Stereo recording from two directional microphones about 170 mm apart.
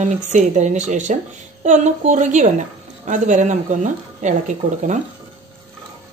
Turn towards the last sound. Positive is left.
turn(degrees=-45)  # may be behind; listen again after turning